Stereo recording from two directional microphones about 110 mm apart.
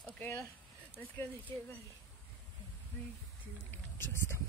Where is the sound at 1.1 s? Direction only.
20° left (ahead or behind).